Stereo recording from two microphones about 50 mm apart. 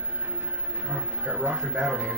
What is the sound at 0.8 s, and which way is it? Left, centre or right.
Speech, right.